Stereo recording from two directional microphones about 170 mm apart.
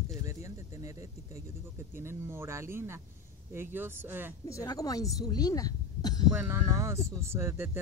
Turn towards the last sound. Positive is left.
turn(degrees=-15)  # may be behind; listen again after turning